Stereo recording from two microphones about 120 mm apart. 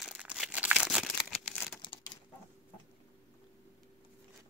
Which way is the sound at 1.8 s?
40° left (ahead or behind).